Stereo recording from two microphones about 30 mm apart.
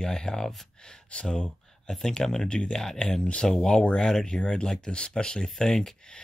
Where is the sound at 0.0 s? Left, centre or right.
Left.